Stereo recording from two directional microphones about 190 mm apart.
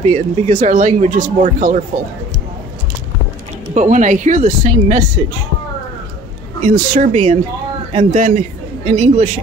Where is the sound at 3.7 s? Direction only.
40° right (ahead or behind).